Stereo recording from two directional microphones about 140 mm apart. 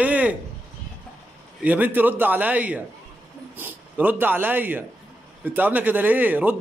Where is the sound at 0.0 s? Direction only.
10° right (ahead or behind).